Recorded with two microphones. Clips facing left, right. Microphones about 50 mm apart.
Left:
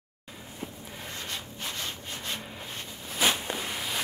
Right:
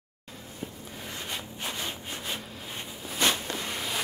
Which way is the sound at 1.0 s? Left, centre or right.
Centre.